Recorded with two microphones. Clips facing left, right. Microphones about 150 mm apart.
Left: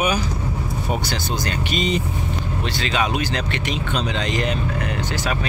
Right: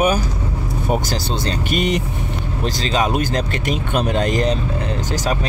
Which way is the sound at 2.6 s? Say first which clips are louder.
Right 4 dB; 40° right (ahead or behind).